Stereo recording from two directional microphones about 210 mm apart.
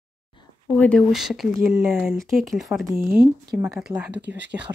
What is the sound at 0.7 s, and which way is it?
Speech, 5° left (ahead or behind).